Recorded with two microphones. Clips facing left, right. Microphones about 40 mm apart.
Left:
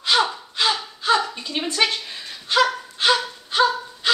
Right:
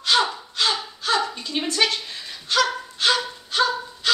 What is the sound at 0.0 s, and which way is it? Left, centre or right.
Gasp, centre.